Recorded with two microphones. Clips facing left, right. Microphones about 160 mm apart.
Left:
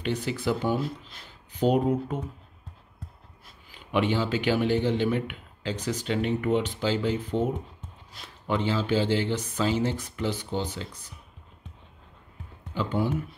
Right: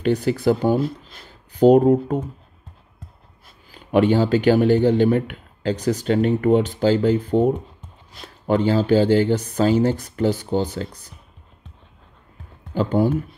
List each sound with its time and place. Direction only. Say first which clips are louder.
0.0 s speech: right 9 dB; 40° right (ahead or behind)
3.7 s speech: right 9 dB; 45° right (ahead or behind)
12.7 s speech: right 8 dB; 45° right (ahead or behind)